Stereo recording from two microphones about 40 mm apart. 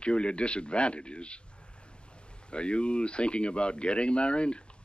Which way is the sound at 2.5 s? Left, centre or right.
Left.